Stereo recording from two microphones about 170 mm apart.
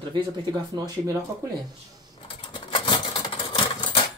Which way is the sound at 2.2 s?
30° left (ahead or behind).